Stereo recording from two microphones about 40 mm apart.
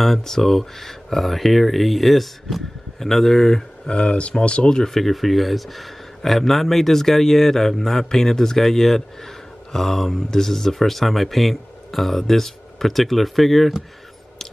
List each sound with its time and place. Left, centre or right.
0.0 s speech: centre
3.9 s speech: left
4.8 s speech: centre